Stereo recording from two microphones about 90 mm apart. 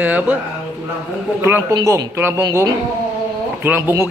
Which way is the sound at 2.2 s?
25° right (ahead or behind).